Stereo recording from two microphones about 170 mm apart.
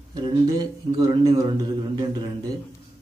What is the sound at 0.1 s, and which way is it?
A man's voice, 25° right (ahead or behind).